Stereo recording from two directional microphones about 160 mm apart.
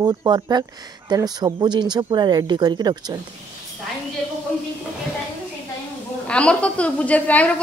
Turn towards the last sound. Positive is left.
turn(degrees=10)  # may be behind; listen again after turning